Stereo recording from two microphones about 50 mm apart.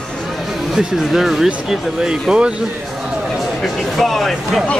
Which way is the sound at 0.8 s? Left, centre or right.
Centre.